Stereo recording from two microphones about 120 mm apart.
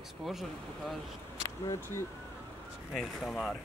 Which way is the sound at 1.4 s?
25° left (ahead or behind).